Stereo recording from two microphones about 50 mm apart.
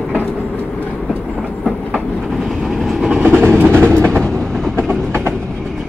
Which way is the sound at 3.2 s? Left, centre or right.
Right.